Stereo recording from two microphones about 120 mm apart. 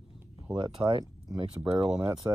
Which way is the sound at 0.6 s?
45° right (ahead or behind).